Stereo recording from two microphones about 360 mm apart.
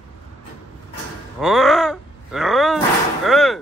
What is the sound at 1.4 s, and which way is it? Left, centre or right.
Groan, centre.